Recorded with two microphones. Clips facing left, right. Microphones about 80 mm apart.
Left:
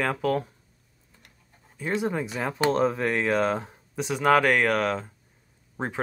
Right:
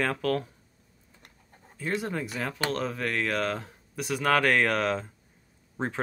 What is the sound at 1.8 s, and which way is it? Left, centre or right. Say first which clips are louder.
Speech: left 4 dB; centre.